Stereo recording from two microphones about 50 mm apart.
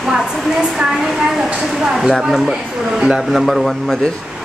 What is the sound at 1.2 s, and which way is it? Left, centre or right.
Hair dryer, centre.